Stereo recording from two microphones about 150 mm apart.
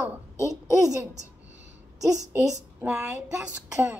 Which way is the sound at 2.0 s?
25° right (ahead or behind).